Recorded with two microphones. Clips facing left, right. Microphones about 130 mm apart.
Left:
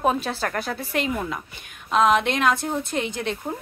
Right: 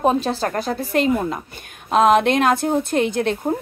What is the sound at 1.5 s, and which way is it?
A woman's voice, 45° right (ahead or behind).